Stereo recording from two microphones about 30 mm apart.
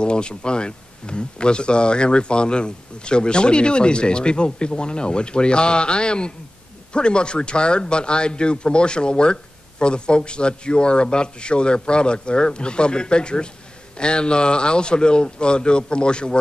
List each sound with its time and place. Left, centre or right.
0.0 s a man's voice: left